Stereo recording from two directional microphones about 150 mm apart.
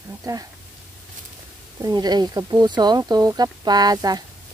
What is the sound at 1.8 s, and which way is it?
Speech, 25° right (ahead or behind).